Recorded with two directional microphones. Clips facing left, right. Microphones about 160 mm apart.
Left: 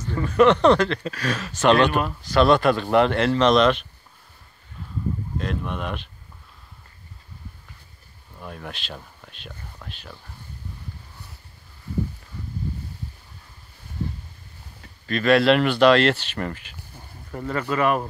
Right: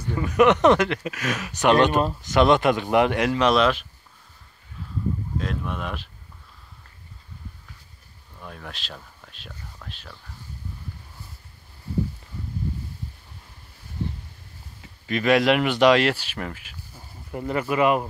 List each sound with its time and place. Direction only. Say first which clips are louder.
0.0 s speech: left 1 dB; 10° right (ahead or behind)
5.4 s speech: left 1 dB; centre (ahead or behind)
8.4 s speech: left 3 dB; 5° left (ahead or behind)
14.8 s speech: even; 15° right (ahead or behind)
17.3 s speech: right 1 dB; 15° right (ahead or behind)